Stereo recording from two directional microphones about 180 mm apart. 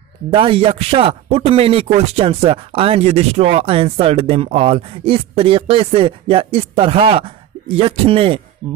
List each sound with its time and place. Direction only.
0.3 s speech: 30° right (ahead or behind)
8.6 s speech: 10° right (ahead or behind)